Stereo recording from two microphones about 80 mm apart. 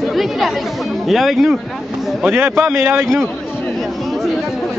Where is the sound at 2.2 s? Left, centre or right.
Right.